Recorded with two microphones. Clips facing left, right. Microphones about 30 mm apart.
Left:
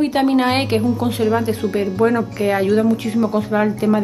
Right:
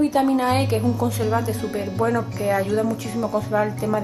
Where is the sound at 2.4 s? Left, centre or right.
Left.